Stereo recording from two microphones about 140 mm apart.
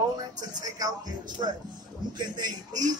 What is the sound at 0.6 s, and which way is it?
Speech, 30° right (ahead or behind).